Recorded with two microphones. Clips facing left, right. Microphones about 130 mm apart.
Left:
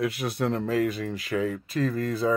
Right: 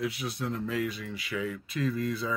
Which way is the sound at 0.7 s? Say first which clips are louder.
Left 7 dB; 45° left (ahead or behind).